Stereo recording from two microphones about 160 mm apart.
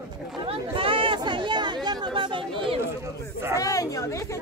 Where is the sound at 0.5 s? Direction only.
35° right (ahead or behind).